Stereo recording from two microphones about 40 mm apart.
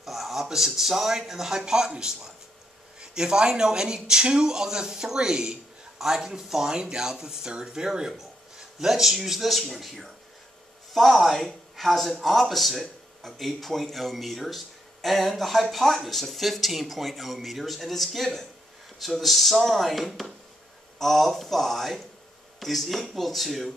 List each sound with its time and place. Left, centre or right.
0.0 s a man's voice: centre